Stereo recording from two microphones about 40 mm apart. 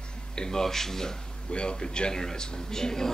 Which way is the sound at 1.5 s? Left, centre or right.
Left.